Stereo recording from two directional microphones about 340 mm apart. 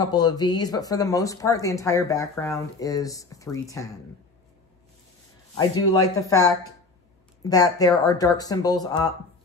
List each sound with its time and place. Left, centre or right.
0.0 s speech: centre
5.5 s speech: centre